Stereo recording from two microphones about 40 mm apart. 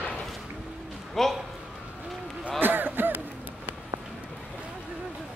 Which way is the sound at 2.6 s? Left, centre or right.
Right.